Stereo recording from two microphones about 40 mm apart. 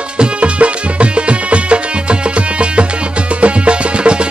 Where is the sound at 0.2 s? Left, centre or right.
Right.